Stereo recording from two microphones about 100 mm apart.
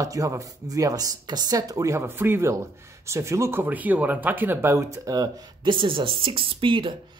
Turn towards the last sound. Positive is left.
turn(degrees=-55)  # may be behind; listen again after turning